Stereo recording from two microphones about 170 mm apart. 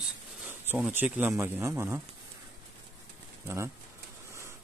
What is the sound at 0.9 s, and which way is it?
Speech, 10° right (ahead or behind).